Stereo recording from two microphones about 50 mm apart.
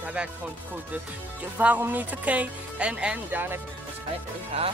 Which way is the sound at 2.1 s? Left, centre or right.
Right.